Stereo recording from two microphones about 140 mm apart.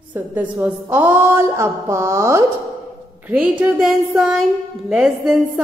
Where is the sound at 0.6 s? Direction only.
15° right (ahead or behind).